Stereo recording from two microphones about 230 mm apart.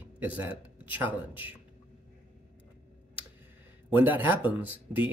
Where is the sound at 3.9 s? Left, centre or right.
Centre.